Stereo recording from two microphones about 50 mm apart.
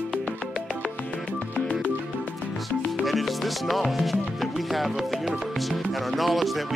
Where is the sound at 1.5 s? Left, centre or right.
Left.